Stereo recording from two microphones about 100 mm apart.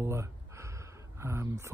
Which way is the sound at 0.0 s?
25° right (ahead or behind).